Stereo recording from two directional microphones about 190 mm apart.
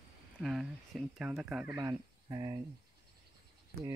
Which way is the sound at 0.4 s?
Centre (ahead or behind).